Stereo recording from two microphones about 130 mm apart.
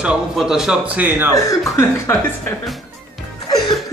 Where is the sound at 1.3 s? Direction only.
20° left (ahead or behind).